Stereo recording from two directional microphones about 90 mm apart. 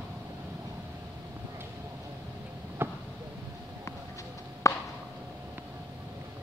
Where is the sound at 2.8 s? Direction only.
25° right (ahead or behind).